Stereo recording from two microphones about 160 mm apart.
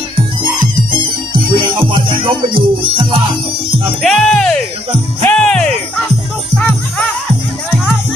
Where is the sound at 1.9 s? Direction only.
30° right (ahead or behind).